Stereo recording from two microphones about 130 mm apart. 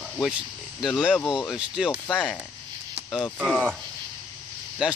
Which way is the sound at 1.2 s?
30° left (ahead or behind).